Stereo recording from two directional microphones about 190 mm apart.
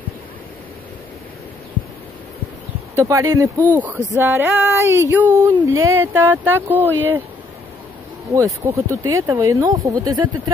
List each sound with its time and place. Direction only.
3.0 s speech: 15° right (ahead or behind)
8.3 s speech: 15° right (ahead or behind)